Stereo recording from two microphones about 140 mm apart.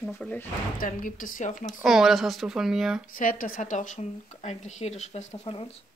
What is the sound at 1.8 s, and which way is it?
Speech, centre (ahead or behind).